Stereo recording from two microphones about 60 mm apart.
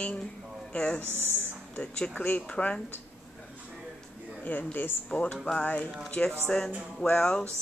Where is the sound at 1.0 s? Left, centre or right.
Right.